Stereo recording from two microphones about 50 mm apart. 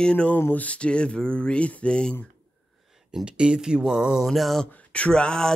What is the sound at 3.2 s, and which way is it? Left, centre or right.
Speech, centre.